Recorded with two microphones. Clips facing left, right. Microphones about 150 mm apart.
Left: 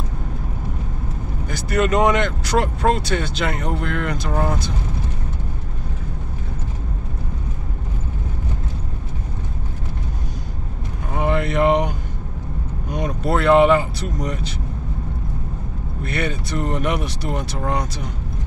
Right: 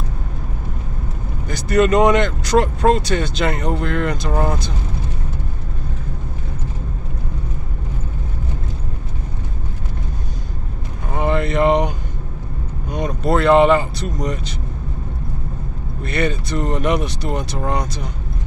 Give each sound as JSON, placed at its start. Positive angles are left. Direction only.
{"t": 1.5, "sound": "speech", "side_deg": 5}
{"t": 11.1, "sound": "vehicle", "side_deg": 5}
{"t": 12.9, "sound": "speech", "side_deg": 5}
{"t": 16.0, "sound": "speech", "side_deg": 5}